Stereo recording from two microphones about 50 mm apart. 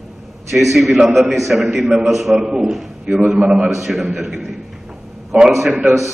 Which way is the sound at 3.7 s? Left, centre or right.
Centre.